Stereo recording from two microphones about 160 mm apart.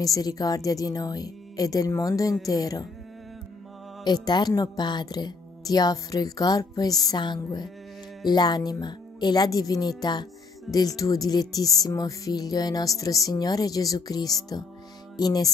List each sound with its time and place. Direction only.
0.0 s speech: 20° left (ahead or behind)
4.0 s speech: 25° left (ahead or behind)